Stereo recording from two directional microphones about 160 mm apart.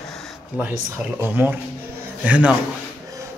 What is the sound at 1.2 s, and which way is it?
A man's voice, 10° right (ahead or behind).